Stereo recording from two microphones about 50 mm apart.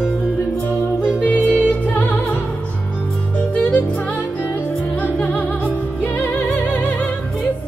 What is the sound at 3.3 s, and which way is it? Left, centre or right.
Music, left.